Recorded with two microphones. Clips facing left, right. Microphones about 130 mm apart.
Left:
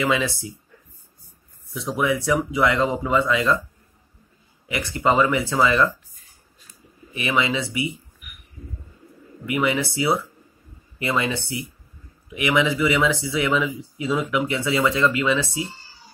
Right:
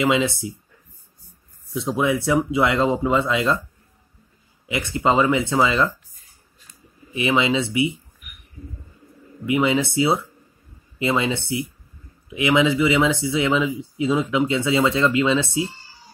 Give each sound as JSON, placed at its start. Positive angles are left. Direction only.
{"t": 0.0, "sound": "speech", "side_deg": -25}
{"t": 1.7, "sound": "speech", "side_deg": -25}
{"t": 4.6, "sound": "speech", "side_deg": -25}
{"t": 7.2, "sound": "speech", "side_deg": -25}
{"t": 9.5, "sound": "speech", "side_deg": -25}